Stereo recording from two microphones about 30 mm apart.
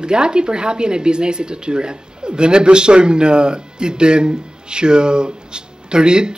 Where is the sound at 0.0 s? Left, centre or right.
Right.